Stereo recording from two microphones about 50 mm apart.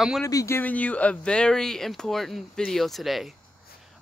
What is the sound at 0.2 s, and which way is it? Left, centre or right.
Speech, left.